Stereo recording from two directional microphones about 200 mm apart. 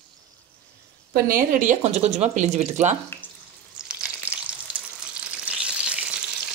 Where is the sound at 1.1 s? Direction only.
40° right (ahead or behind).